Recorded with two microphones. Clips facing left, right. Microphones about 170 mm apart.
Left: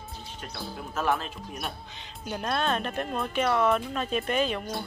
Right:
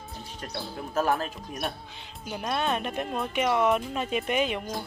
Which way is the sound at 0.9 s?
40° right (ahead or behind).